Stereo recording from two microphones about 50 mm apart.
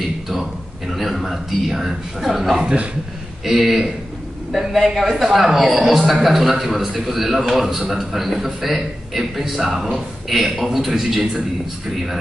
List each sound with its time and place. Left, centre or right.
0.0 s speech: centre
2.6 s a man's voice: right
3.4 s a man's voice: centre